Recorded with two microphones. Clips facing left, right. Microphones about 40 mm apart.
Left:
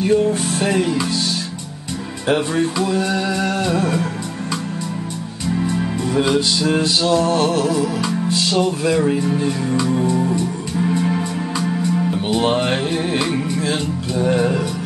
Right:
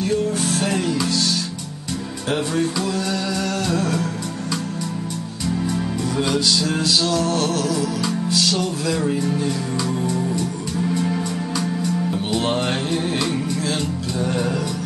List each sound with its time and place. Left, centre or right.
0.0 s music: left
2.2 s music: centre
5.6 s music: left